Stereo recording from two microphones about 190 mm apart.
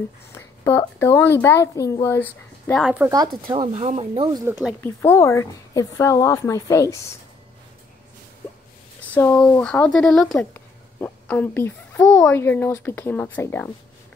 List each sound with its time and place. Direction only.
0.3 s a woman's voice: 15° left (ahead or behind)
2.8 s speech: 5° right (ahead or behind)
3.4 s speech: 25° right (ahead or behind)
4.5 s speech: 5° right (ahead or behind)
4.8 s a woman's voice: 15° left (ahead or behind)
9.1 s a woman's voice: 15° left (ahead or behind)